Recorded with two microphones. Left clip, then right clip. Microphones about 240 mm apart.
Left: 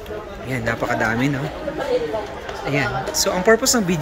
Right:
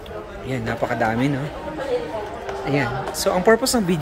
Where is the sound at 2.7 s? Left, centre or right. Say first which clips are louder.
Left 2 dB; centre.